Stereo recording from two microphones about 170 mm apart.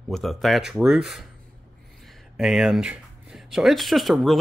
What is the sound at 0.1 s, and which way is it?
Speech, centre (ahead or behind).